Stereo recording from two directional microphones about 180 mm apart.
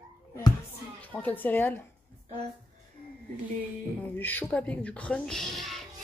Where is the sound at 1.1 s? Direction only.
10° left (ahead or behind).